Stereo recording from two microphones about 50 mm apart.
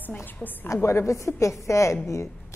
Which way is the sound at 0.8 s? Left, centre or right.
Left.